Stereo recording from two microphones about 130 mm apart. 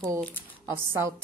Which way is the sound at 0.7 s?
20° right (ahead or behind).